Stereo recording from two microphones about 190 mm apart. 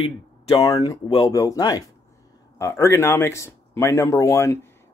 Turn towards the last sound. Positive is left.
turn(degrees=15)  # may be behind; listen again after turning